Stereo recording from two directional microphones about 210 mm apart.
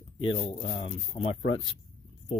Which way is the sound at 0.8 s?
25° left (ahead or behind).